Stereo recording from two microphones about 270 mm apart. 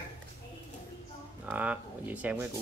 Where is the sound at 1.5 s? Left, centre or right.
Centre.